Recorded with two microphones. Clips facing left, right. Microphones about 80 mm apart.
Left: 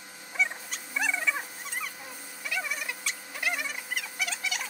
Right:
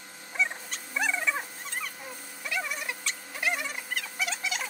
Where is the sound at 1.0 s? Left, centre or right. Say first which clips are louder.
Right 1 dB; centre.